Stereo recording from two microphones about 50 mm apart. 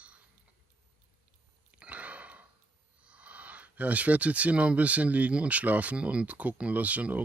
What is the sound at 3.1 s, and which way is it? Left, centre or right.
Speech, right.